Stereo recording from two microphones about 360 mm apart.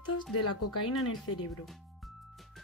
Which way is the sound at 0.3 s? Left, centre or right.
Left.